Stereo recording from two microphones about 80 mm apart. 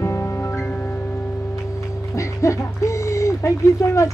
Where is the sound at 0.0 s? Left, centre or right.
Left.